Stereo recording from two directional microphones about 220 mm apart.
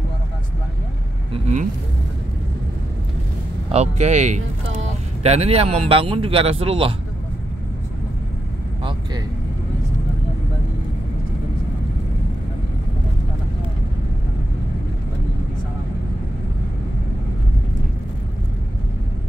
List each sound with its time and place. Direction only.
1.3 s speech: 35° right (ahead or behind)
3.7 s speech: 30° right (ahead or behind)